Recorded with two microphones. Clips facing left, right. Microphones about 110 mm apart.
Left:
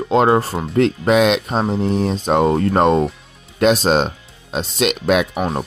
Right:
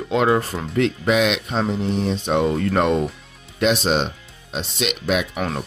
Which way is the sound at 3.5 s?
45° left (ahead or behind).